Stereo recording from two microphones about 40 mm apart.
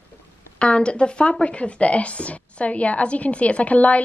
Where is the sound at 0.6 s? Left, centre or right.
Left.